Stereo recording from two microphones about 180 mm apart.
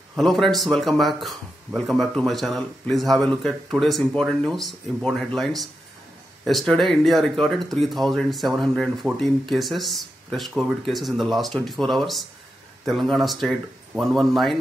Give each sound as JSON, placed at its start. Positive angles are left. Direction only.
{"t": 0.1, "sound": "speech", "side_deg": 0}